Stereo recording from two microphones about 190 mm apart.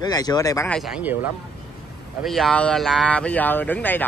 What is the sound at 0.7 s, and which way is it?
Speech, centre (ahead or behind).